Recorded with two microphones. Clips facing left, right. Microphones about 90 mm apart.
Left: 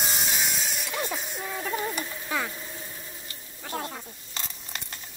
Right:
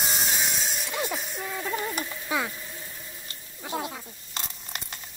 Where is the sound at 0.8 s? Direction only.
Centre (ahead or behind).